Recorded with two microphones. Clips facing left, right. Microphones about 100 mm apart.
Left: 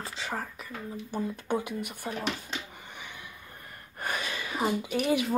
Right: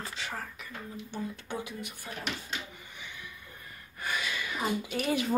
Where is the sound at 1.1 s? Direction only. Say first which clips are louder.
Left 7 dB; 50° left (ahead or behind).